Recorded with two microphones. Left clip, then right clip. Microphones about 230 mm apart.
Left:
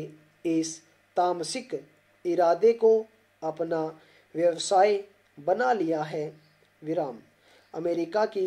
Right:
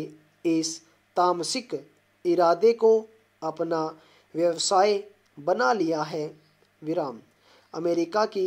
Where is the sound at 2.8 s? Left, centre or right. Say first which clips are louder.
Right 1 dB; right.